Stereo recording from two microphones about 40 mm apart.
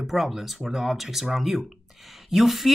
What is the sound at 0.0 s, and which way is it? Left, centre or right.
Speech, centre.